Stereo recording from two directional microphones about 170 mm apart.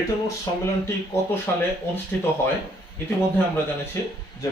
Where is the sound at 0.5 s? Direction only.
20° left (ahead or behind).